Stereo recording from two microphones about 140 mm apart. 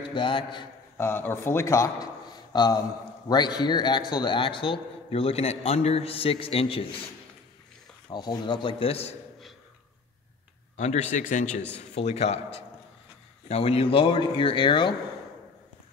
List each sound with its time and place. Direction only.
0.1 s a man's voice: 35° left (ahead or behind)
0.9 s a man's voice: 15° left (ahead or behind); by 7.1 s 45° left (ahead or behind)
8.1 s a man's voice: 30° left (ahead or behind)
10.8 s speech: 55° left (ahead or behind)
11.9 s a man's voice: 50° left (ahead or behind)